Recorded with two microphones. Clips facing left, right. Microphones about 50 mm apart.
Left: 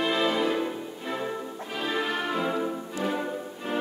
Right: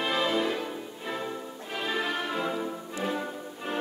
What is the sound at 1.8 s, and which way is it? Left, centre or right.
Music, centre.